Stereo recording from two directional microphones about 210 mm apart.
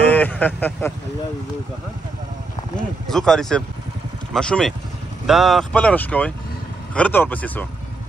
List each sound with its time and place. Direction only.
0.1 s speech: 10° left (ahead or behind)
3.1 s speech: centre (ahead or behind)